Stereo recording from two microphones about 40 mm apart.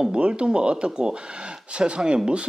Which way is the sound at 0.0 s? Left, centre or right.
Right.